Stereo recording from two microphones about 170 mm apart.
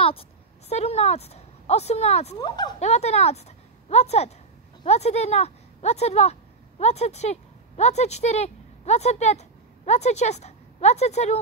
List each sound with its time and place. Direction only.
0.0 s a woman's voice: 35° left (ahead or behind)
2.3 s speech: 25° left (ahead or behind)
2.8 s a woman's voice: 40° left (ahead or behind)